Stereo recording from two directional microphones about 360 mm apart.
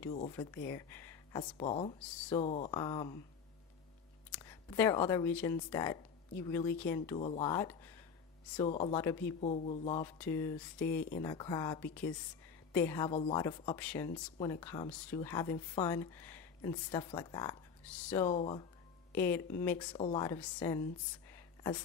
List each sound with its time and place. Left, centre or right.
0.3 s speech: centre
4.4 s speech: centre
10.1 s speech: centre
21.3 s a sound: centre